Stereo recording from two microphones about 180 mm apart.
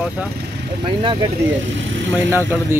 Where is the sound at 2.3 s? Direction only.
15° right (ahead or behind).